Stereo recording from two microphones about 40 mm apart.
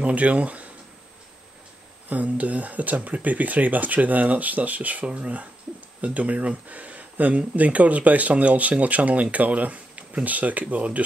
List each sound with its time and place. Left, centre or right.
0.0 s speech: right
2.0 s speech: right
5.0 s speech: right
5.9 s speech: right